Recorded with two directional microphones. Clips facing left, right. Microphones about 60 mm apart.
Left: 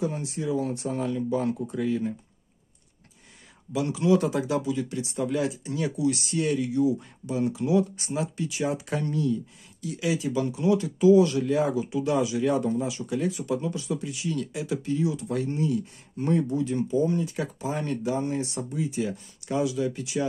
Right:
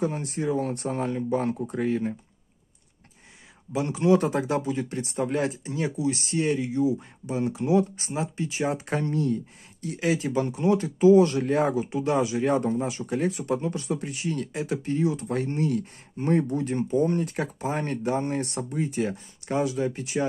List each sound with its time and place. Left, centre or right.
0.0 s speech: right
3.7 s speech: right
5.7 s speech: right
16.2 s speech: right